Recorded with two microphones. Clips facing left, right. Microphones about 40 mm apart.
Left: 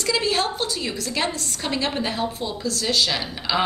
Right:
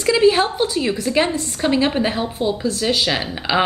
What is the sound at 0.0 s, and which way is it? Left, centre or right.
A woman's voice, centre.